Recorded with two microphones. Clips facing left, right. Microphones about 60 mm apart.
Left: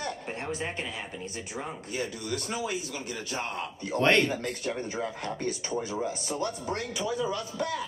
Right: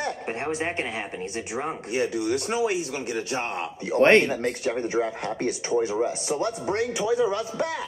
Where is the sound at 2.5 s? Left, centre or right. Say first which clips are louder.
Right 8 dB; right.